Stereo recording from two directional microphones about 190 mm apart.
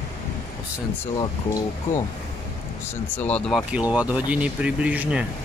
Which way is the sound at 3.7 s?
5° right (ahead or behind).